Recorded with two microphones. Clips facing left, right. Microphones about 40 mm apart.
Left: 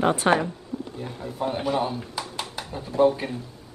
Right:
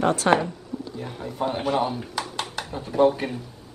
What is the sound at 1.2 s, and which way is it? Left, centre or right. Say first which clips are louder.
Speech: right 1 dB; right.